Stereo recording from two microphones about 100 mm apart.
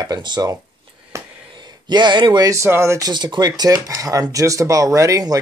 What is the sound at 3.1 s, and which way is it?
Speech, 45° right (ahead or behind).